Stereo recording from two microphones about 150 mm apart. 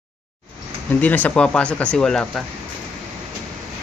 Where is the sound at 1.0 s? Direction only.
10° left (ahead or behind).